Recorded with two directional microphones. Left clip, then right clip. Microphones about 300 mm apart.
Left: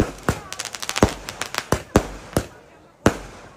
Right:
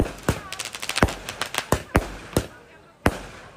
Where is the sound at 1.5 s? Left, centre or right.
Centre.